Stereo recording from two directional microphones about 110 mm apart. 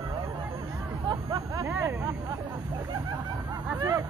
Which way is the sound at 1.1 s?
35° right (ahead or behind).